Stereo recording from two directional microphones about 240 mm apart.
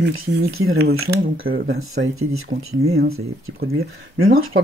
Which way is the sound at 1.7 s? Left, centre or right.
Right.